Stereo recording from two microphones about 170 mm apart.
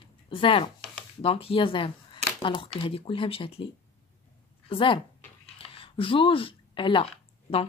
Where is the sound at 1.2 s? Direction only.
35° left (ahead or behind).